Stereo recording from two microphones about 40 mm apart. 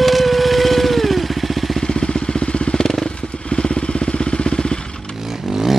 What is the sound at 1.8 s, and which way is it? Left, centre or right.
Vehicle, left.